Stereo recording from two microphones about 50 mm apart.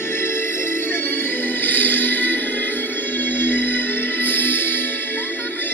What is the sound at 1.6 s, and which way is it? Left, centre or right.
Music, left.